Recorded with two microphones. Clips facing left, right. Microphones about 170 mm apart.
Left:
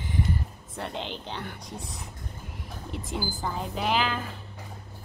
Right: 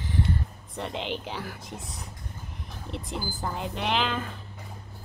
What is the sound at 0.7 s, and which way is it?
Speech, centre (ahead or behind).